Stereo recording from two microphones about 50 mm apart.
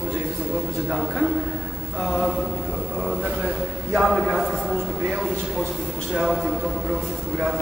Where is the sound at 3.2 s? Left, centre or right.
Right.